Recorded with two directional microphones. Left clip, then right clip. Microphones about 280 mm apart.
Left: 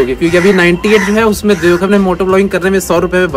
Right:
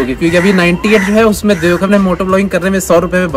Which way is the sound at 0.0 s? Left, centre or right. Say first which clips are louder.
Left 2 dB; centre.